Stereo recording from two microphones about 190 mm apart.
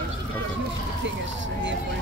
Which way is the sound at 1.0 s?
75° right (ahead or behind).